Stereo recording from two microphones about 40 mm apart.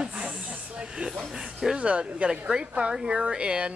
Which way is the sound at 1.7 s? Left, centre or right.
Right.